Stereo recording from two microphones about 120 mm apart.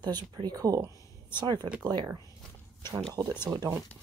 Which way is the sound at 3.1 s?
30° right (ahead or behind).